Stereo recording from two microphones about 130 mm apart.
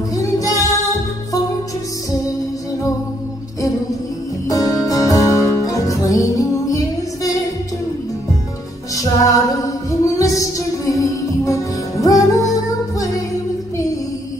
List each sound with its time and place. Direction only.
0.1 s music: 25° left (ahead or behind)
4.5 s music: 25° left (ahead or behind)
8.9 s music: 25° left (ahead or behind)